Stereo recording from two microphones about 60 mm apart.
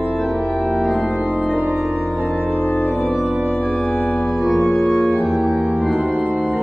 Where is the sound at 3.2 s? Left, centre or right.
Right.